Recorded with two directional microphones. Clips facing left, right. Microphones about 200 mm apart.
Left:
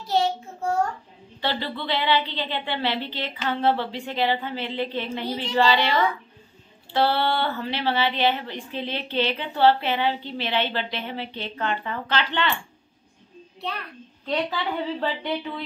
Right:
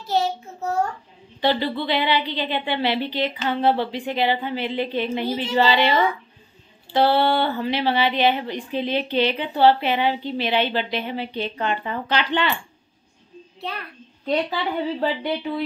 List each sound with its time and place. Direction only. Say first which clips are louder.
0.0 s child singing: even; 5° right (ahead or behind)
1.4 s a woman's voice: right 6 dB; 15° right (ahead or behind)
14.2 s a woman's voice: right 3 dB; 10° right (ahead or behind)